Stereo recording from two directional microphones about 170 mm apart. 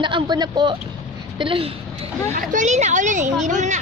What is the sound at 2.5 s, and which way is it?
A woman's voice, 45° right (ahead or behind).